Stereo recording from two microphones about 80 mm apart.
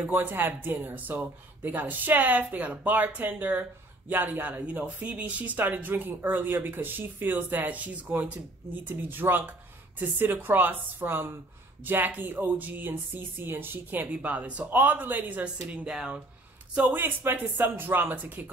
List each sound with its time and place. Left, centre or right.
0.0 s speech: right
16.7 s speech: right